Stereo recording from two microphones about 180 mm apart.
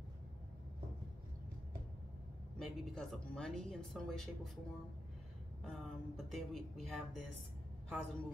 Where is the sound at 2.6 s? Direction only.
5° left (ahead or behind).